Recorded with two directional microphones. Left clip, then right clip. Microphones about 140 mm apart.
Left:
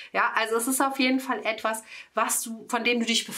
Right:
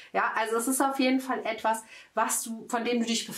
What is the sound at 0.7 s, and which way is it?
Speech, 45° left (ahead or behind).